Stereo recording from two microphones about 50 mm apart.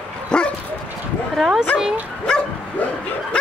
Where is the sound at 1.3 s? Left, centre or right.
Centre.